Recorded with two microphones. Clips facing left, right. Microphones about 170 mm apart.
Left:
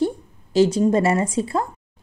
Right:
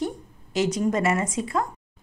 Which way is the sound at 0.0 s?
30° left (ahead or behind).